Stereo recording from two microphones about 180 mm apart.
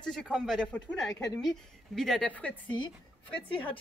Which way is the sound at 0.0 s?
5° left (ahead or behind).